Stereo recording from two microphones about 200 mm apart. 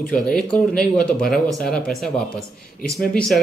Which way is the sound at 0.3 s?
5° left (ahead or behind).